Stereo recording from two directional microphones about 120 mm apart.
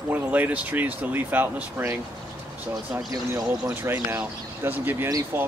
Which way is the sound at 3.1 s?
30° right (ahead or behind).